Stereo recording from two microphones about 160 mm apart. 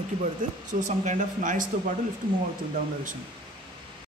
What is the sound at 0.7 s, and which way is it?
Speech, 50° right (ahead or behind).